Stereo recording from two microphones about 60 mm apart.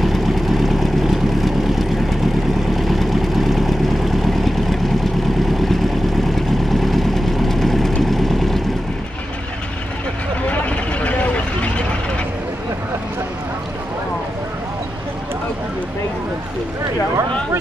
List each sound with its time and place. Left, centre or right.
0.0 s vehicle: centre
6.3 s vehicle: centre
10.4 s vehicle: left